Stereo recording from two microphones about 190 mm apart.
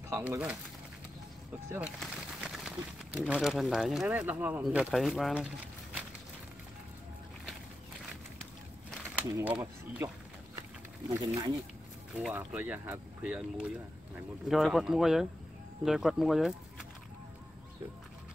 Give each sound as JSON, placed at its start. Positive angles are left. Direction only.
{"t": 0.2, "sound": "speech", "side_deg": -5}
{"t": 1.7, "sound": "speech", "side_deg": -5}
{"t": 8.9, "sound": "a sound", "side_deg": -10}
{"t": 11.1, "sound": "speech", "side_deg": -20}